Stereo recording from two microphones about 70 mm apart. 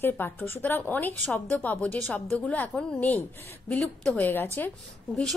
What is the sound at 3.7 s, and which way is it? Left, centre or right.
Speech, centre.